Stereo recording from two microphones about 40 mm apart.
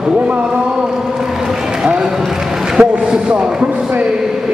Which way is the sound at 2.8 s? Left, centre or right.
Right.